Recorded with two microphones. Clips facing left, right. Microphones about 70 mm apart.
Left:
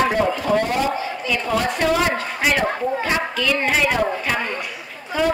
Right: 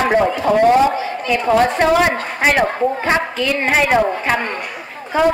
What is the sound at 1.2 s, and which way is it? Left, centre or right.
A woman's voice, right.